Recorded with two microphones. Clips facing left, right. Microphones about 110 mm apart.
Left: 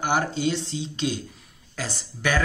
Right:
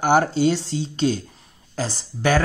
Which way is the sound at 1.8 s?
35° right (ahead or behind).